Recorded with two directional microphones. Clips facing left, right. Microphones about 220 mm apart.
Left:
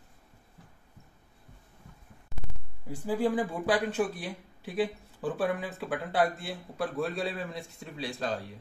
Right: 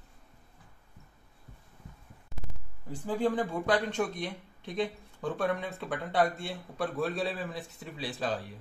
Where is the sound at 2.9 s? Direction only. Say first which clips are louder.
Left 1 dB; 10° left (ahead or behind).